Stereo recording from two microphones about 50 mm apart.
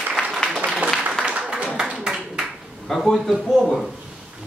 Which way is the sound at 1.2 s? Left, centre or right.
Right.